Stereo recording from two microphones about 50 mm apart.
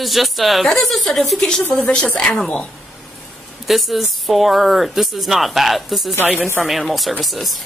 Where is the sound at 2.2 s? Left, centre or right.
Centre.